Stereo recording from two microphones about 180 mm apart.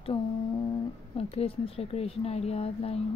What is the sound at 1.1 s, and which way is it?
Speech, 30° left (ahead or behind).